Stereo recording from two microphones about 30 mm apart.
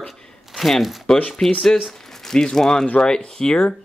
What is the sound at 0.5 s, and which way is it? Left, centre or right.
Speech, centre.